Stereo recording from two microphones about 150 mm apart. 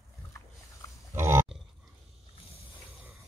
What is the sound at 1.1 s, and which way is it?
Pig, 15° right (ahead or behind).